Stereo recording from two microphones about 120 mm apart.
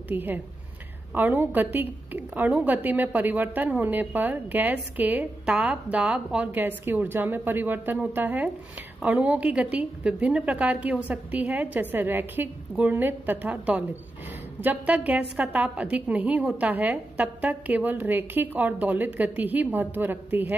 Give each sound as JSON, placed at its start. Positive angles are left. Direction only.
{"t": 0.1, "sound": "a woman's voice", "side_deg": -15}